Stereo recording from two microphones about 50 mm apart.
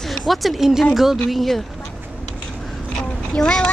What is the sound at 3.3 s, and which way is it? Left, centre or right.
Speech, centre.